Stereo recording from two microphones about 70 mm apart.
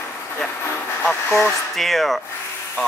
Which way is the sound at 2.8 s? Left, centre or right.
Centre.